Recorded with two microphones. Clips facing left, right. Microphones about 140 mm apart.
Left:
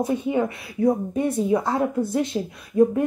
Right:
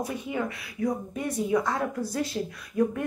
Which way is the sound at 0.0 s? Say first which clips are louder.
Left 8 dB; 25° left (ahead or behind).